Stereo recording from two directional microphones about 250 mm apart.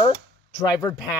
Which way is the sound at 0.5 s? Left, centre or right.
Centre.